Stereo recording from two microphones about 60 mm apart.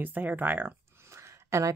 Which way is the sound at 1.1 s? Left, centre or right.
Right.